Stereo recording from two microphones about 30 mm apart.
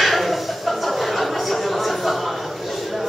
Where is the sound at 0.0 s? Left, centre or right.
Centre.